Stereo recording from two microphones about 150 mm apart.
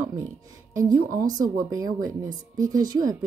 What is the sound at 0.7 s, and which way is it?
A woman's voice, 20° right (ahead or behind).